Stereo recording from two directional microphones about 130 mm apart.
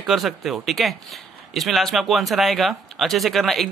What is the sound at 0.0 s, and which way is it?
Speech, centre (ahead or behind).